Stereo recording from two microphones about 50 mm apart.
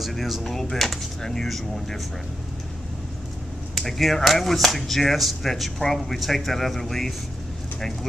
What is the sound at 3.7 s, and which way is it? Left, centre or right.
Speech, centre.